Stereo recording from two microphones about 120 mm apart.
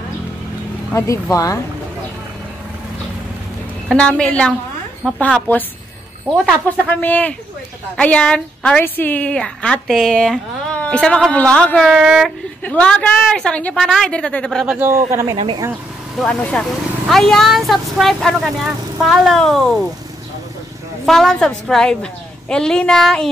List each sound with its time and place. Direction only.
0.9 s speech: 25° left (ahead or behind)
3.9 s speech: 10° left (ahead or behind)
6.9 s speech: 15° left (ahead or behind)
12.0 s a woman's voice: 5° right (ahead or behind)
12.6 s a woman's voice: 10° left (ahead or behind)
14.8 s speech: 20° right (ahead or behind)
15.3 s speech: 45° right (ahead or behind)
16.2 s a woman's voice: 10° left (ahead or behind)
21.0 s a woman's voice: 5° left (ahead or behind)